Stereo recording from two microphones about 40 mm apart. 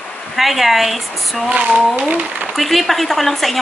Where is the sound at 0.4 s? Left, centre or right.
Centre.